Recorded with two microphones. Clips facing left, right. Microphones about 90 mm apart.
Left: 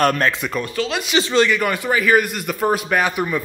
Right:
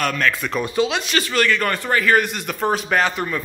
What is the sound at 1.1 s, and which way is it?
Speech, 20° left (ahead or behind).